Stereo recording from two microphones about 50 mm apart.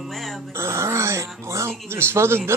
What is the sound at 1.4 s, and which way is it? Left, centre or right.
Speech, right.